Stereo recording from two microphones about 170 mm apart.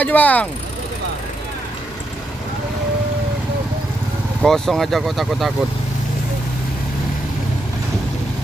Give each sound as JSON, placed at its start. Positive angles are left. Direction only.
{"t": 0.0, "sound": "speech", "side_deg": 10}
{"t": 4.4, "sound": "speech", "side_deg": 0}